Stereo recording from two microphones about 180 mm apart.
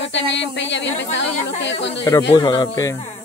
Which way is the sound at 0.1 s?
90° left.